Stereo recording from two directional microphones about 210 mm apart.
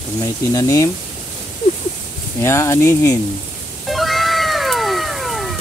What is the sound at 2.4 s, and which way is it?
Speech, 15° left (ahead or behind).